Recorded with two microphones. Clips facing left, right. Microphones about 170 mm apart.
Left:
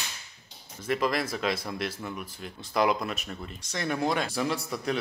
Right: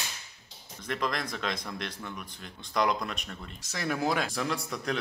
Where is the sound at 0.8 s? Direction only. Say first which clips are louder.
Left 5 dB; 5° left (ahead or behind).